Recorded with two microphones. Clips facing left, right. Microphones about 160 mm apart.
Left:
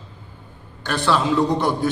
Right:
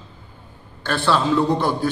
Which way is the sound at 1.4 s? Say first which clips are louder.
Even; 20° left (ahead or behind).